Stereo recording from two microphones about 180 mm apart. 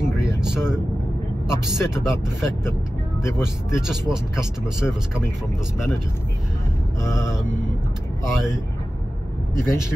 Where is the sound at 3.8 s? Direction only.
5° right (ahead or behind).